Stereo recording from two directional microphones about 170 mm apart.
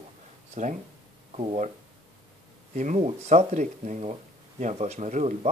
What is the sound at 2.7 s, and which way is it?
Speech, 40° right (ahead or behind).